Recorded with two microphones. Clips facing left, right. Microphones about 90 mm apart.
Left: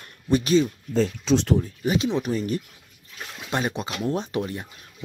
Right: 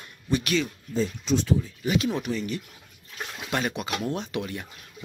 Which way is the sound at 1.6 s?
30° left (ahead or behind).